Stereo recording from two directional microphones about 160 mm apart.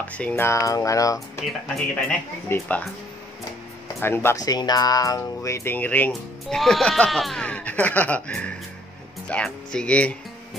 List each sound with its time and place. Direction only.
0.0 s speech: 10° left (ahead or behind)
2.0 s speech: 10° left (ahead or behind)
4.0 s speech: 15° left (ahead or behind)